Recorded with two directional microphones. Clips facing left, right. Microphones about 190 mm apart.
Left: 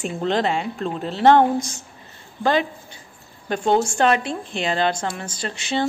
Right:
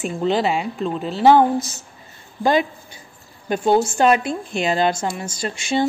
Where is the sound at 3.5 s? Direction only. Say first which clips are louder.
Right 2 dB; 10° right (ahead or behind).